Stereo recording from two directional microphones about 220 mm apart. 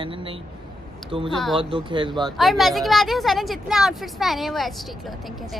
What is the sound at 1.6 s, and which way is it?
Speech, 20° right (ahead or behind).